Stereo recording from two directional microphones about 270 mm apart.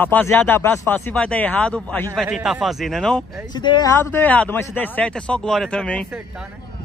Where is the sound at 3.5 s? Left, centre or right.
Centre.